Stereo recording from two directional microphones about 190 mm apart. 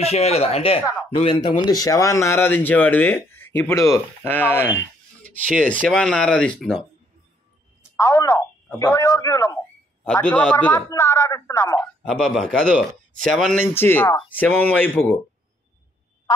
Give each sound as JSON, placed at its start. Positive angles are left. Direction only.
{"t": 0.0, "sound": "speech", "side_deg": 35}
{"t": 5.7, "sound": "speech", "side_deg": 5}
{"t": 7.9, "sound": "a sound", "side_deg": 15}
{"t": 8.7, "sound": "speech", "side_deg": 15}
{"t": 12.0, "sound": "speech", "side_deg": 0}